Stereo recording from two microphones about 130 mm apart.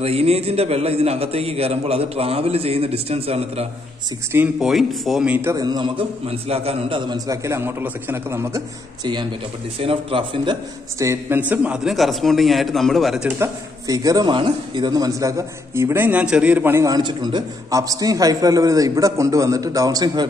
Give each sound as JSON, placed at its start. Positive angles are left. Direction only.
{"t": 0.0, "sound": "a man's voice", "side_deg": -50}
{"t": 4.6, "sound": "a man's voice", "side_deg": 0}
{"t": 5.5, "sound": "a man's voice", "side_deg": -30}
{"t": 6.2, "sound": "a man's voice", "side_deg": -50}
{"t": 7.1, "sound": "speech", "side_deg": -25}
{"t": 9.0, "sound": "a man's voice", "side_deg": -35}
{"t": 11.0, "sound": "a man's voice", "side_deg": -20}
{"t": 13.4, "sound": "speech", "side_deg": -30}
{"t": 16.8, "sound": "speech", "side_deg": -30}